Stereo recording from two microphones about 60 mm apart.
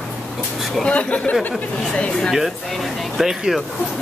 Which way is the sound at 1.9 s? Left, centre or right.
Centre.